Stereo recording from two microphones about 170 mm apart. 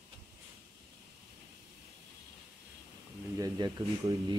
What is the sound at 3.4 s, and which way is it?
Speech, 20° right (ahead or behind).